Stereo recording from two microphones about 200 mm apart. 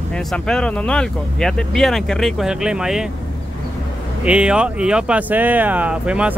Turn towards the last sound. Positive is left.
turn(degrees=-5)  # may be behind; listen again after turning